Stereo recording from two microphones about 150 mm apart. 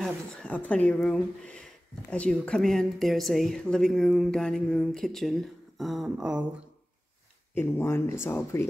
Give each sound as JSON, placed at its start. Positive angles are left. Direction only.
{"t": 0.0, "sound": "speech", "side_deg": 5}
{"t": 7.5, "sound": "speech", "side_deg": 15}